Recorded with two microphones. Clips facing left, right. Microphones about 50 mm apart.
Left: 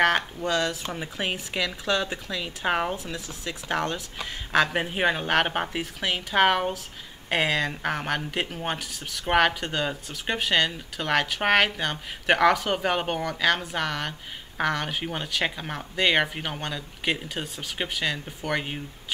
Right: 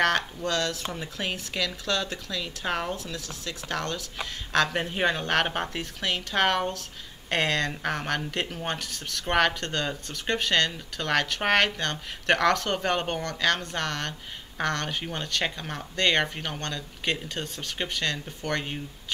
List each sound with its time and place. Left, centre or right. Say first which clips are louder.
0.0 s speech: left 2 dB; centre